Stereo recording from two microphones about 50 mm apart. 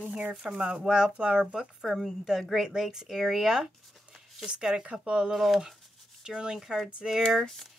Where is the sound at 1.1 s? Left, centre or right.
Right.